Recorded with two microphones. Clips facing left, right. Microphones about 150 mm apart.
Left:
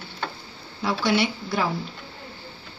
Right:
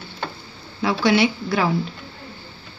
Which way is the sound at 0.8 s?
90° right.